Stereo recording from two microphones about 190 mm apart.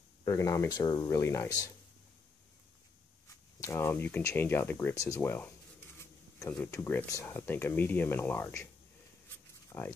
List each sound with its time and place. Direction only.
0.2 s speech: 15° left (ahead or behind)
3.6 s speech: 15° left (ahead or behind)
9.7 s dog: 10° left (ahead or behind)